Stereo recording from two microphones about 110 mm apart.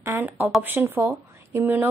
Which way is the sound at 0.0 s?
20° right (ahead or behind).